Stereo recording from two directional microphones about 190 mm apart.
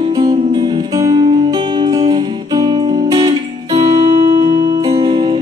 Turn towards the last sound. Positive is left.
turn(degrees=-25)  # may be behind; listen again after turning